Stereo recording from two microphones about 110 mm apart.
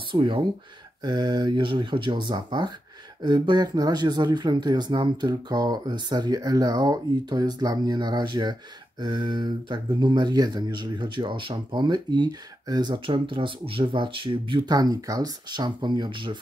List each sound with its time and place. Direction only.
0.1 s speech: 50° right (ahead or behind)
1.0 s speech: 40° right (ahead or behind)
14.7 s speech: 35° right (ahead or behind)